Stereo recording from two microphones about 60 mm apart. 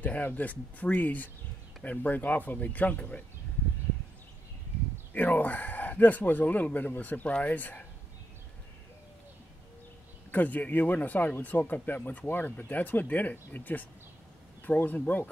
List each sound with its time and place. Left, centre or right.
0.0 s speech: left
5.1 s speech: left
10.3 s speech: left